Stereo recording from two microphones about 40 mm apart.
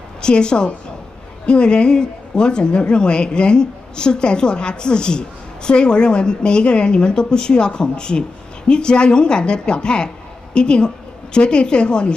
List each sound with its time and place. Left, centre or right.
0.2 s a woman's voice: left